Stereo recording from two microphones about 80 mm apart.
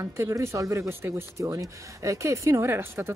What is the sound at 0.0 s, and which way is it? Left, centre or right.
Speech, right.